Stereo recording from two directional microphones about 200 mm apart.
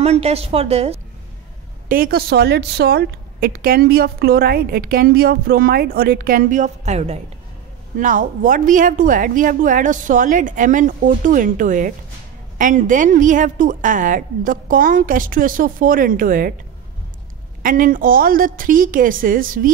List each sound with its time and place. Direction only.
0.0 s a woman's voice: 30° right (ahead or behind)
1.9 s a woman's voice: 50° right (ahead or behind)
17.6 s a woman's voice: 45° right (ahead or behind)